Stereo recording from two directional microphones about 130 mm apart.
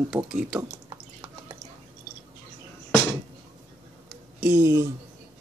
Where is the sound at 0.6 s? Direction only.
30° right (ahead or behind).